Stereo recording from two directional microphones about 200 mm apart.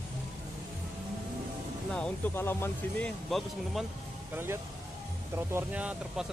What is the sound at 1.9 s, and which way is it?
Speech, 5° left (ahead or behind).